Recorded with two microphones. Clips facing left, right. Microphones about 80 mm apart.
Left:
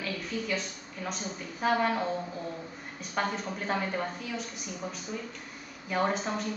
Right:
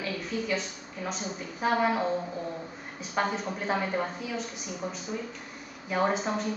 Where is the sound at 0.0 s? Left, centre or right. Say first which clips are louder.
Right 2 dB; centre.